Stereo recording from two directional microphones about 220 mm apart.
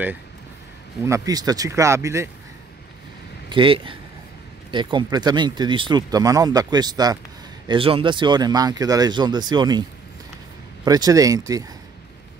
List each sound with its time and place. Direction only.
1.0 s speech: 15° right (ahead or behind)
3.4 s speech: 25° right (ahead or behind)
10.9 s speech: 15° right (ahead or behind)